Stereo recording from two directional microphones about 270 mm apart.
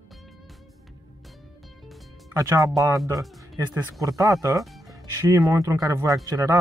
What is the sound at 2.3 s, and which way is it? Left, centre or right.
Speech, centre.